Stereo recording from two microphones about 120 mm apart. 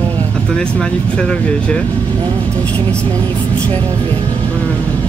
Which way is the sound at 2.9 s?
10° left (ahead or behind).